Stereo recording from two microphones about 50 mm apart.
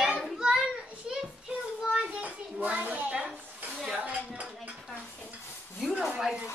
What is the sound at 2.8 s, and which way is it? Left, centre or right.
Speech, right.